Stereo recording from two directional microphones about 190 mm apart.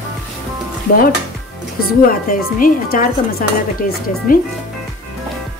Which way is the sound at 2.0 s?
45° left (ahead or behind).